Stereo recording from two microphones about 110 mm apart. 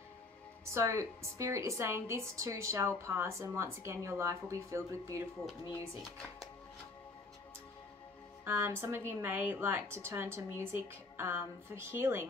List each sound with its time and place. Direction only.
0.7 s a woman's voice: 25° right (ahead or behind)
8.5 s a woman's voice: 20° right (ahead or behind)